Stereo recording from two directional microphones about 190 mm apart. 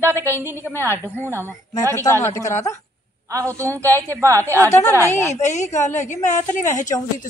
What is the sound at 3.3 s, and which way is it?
A woman's voice, 15° right (ahead or behind).